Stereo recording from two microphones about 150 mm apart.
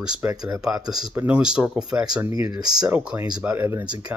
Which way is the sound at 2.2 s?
25° right (ahead or behind).